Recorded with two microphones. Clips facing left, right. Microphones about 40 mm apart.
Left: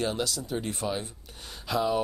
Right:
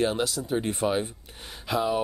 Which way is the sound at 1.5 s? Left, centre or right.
Centre.